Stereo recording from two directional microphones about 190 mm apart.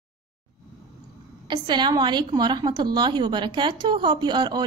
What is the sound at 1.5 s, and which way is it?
A woman's voice, 25° right (ahead or behind).